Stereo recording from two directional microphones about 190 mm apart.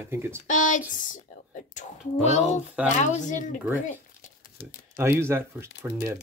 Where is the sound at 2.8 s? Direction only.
40° left (ahead or behind).